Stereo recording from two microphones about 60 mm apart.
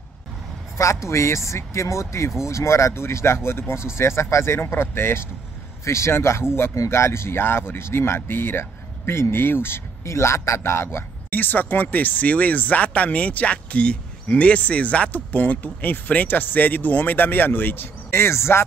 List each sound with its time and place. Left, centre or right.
0.7 s speech: left
11.2 s speech: left